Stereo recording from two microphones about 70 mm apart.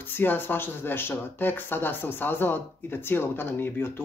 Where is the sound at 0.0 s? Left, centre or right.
Left.